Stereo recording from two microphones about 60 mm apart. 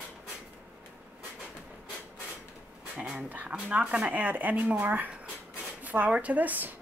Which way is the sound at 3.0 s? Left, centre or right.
Centre.